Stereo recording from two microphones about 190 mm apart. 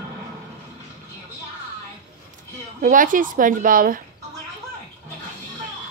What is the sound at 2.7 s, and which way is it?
A woman's voice, 45° right (ahead or behind).